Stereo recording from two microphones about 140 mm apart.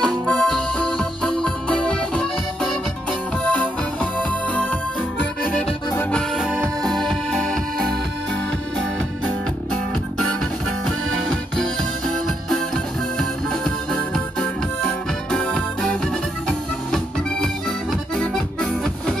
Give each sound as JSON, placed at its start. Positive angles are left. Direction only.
{"t": 0.0, "sound": "music", "side_deg": 5}
{"t": 5.2, "sound": "accordion", "side_deg": 5}
{"t": 6.8, "sound": "music", "side_deg": -30}
{"t": 7.1, "sound": "music", "side_deg": 5}
{"t": 11.2, "sound": "music", "side_deg": 5}
{"t": 13.5, "sound": "music", "side_deg": 5}